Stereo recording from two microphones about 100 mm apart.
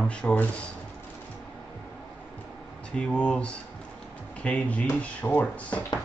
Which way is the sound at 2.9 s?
10° left (ahead or behind).